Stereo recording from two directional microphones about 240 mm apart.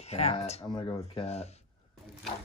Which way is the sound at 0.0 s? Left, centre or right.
Left.